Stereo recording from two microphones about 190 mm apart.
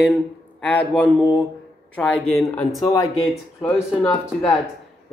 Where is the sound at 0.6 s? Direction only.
10° left (ahead or behind).